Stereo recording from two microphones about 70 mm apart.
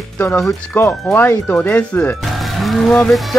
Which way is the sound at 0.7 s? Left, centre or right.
Left.